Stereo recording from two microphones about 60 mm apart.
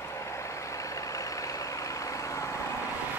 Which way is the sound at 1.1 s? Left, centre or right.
Left.